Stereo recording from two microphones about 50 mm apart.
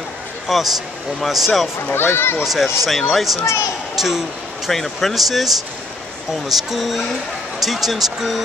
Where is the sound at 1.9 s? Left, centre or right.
Left.